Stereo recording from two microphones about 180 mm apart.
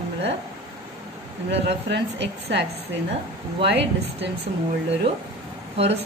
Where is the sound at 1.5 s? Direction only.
75° right (ahead or behind).